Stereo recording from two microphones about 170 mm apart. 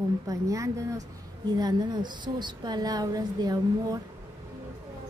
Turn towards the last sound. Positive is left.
turn(degrees=-25)  # may be behind; listen again after turning